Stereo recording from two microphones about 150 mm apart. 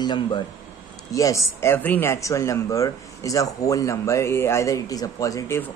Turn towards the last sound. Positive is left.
turn(degrees=20)  # may be behind; listen again after turning